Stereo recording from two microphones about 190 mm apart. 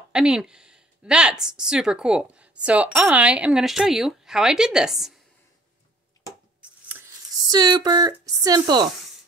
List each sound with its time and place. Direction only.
0.1 s a woman's voice: 5° right (ahead or behind)
6.9 s speech: 15° right (ahead or behind)